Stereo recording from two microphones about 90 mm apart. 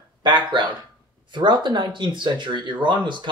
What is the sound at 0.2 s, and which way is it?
Speech, 60° right (ahead or behind).